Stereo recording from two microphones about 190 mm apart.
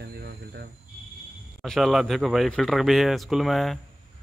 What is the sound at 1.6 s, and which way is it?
Speech, centre (ahead or behind).